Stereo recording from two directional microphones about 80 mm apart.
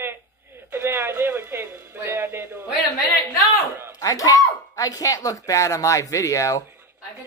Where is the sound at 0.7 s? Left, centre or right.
Right.